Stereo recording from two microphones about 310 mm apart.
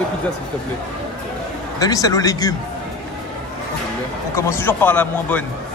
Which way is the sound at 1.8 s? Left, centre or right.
Centre.